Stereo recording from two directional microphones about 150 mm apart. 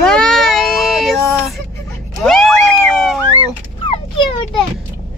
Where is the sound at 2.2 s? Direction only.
5° left (ahead or behind).